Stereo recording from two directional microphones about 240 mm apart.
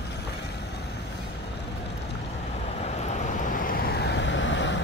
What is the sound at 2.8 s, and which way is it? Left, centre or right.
Vehicle, left.